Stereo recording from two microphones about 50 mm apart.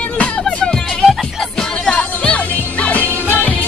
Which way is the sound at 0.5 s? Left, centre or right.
Centre.